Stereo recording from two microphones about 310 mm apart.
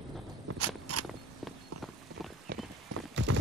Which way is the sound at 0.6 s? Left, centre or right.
Right.